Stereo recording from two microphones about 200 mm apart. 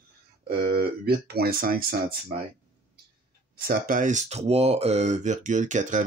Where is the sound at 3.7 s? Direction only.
40° right (ahead or behind).